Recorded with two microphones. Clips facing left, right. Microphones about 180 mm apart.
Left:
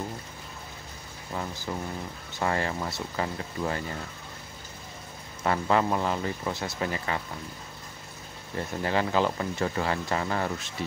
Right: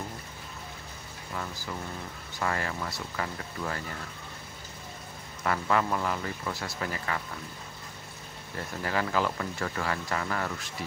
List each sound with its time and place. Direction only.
1.3 s speech: 25° left (ahead or behind)
5.4 s speech: 25° left (ahead or behind)
8.5 s speech: 25° left (ahead or behind)